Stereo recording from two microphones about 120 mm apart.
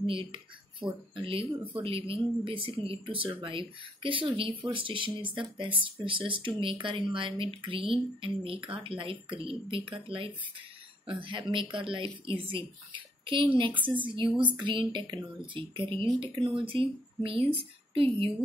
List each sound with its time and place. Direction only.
0.0 s speech: 45° right (ahead or behind)